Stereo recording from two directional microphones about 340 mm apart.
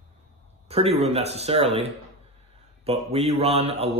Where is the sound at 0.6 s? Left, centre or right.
Centre.